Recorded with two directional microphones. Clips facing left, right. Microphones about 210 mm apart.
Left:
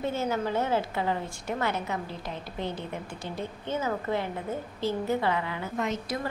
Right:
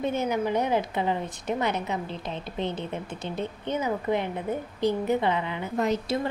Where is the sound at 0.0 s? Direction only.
15° right (ahead or behind).